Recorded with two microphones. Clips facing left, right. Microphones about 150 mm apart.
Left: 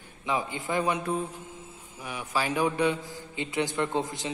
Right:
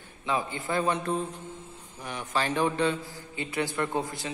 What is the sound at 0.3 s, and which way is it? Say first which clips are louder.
A man's voice: even; 15° left (ahead or behind).